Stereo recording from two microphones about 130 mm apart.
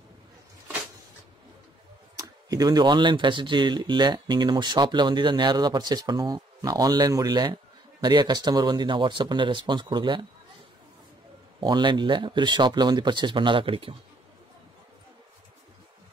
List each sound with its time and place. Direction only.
2.1 s speech: 30° right (ahead or behind)
11.6 s speech: 35° right (ahead or behind)